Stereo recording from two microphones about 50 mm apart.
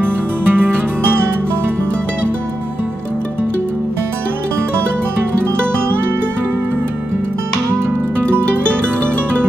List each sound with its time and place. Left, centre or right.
0.0 s music: right